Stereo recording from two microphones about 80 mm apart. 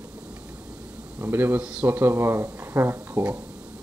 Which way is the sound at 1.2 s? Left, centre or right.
Right.